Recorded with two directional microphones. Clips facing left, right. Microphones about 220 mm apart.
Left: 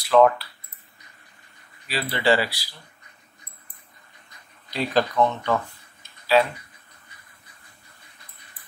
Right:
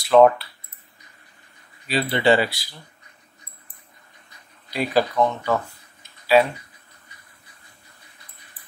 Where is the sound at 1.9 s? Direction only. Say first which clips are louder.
Right 3 dB; 25° right (ahead or behind).